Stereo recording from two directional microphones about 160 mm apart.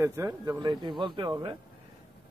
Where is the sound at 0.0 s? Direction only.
20° right (ahead or behind).